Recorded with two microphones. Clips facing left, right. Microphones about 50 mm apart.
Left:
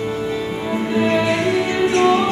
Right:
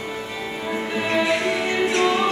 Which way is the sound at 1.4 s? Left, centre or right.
Right.